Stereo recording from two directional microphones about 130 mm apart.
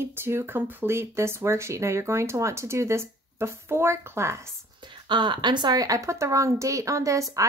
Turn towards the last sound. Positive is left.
turn(degrees=-25)  # may be behind; listen again after turning